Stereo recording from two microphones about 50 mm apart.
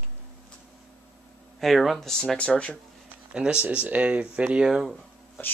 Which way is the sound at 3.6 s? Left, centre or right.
Right.